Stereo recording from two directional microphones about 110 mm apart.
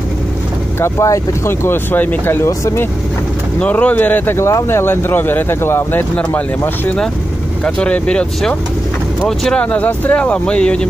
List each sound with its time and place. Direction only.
0.7 s speech: 25° left (ahead or behind)
3.5 s speech: 10° left (ahead or behind)